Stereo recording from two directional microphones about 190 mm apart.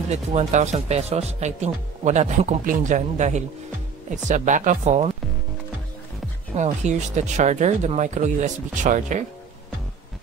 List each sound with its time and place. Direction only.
0.1 s speech: 35° right (ahead or behind)
6.5 s speech: 35° right (ahead or behind)